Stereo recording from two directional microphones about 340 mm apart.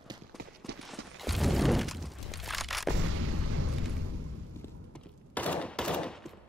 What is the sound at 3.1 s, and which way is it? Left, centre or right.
Artillery fire, right.